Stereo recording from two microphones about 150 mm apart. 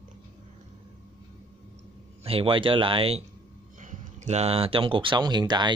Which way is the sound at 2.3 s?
35° right (ahead or behind).